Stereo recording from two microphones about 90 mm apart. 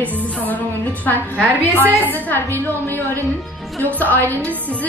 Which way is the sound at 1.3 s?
20° right (ahead or behind).